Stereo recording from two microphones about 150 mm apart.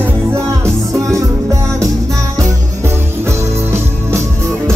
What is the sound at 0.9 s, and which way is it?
Music, 20° right (ahead or behind).